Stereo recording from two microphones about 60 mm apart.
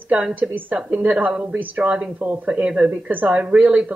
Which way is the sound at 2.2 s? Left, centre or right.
Right.